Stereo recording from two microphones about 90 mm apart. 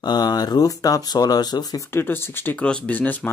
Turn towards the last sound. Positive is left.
turn(degrees=20)  # may be behind; listen again after turning